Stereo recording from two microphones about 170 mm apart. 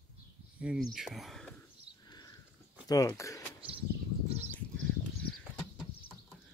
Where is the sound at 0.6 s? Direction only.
5° right (ahead or behind).